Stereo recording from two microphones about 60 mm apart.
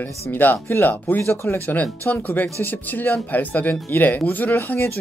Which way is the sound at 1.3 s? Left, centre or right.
Left.